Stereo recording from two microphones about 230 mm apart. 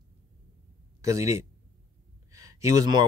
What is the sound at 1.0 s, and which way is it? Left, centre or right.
Speech, centre.